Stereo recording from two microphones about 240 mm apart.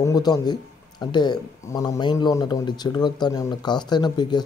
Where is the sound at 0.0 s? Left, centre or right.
Centre.